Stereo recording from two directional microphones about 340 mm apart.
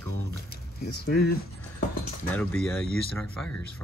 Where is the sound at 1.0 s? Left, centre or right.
Left.